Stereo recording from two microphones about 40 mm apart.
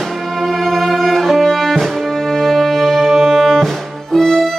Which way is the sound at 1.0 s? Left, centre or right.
Centre.